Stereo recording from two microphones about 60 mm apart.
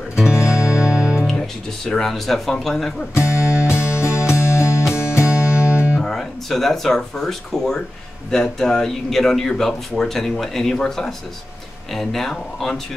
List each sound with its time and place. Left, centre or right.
0.3 s music: centre
1.9 s speech: centre
3.2 s music: left
5.9 s speech: centre